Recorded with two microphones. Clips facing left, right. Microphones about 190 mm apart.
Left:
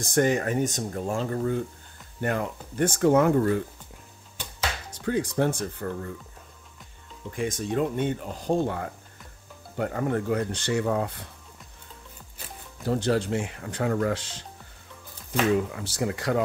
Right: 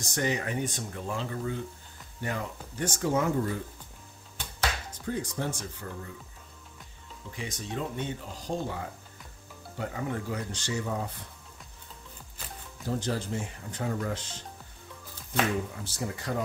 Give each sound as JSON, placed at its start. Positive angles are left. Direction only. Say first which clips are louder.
{"t": 0.0, "sound": "speech", "louder": "left 7 dB", "side_deg": 50}
{"t": 5.0, "sound": "speech", "louder": "left 8 dB", "side_deg": 75}
{"t": 7.3, "sound": "speech", "louder": "left 9 dB", "side_deg": 50}
{"t": 12.8, "sound": "speech", "louder": "left 7 dB", "side_deg": 70}
{"t": 15.7, "sound": "speech", "louder": "left 7 dB", "side_deg": 80}